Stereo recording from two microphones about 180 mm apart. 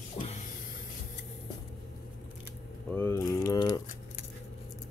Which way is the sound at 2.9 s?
15° left (ahead or behind).